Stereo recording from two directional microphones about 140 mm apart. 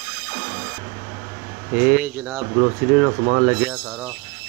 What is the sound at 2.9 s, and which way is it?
Speech, 5° right (ahead or behind).